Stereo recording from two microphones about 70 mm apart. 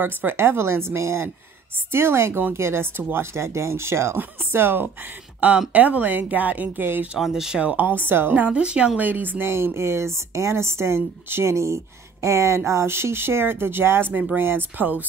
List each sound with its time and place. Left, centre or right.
0.0 s a woman's voice: right
5.7 s speech: right
7.2 s speech: centre
7.6 s a woman's voice: right
8.5 s speech: centre
9.5 s a woman's voice: right